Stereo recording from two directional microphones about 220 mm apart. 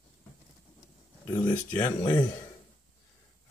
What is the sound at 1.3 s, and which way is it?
Speech, 20° left (ahead or behind).